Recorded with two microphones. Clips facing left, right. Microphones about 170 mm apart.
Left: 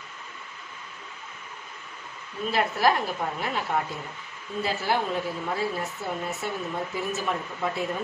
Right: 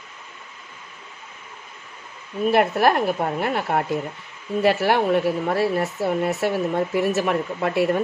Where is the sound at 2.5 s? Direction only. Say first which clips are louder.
Right 5 dB; 65° right (ahead or behind).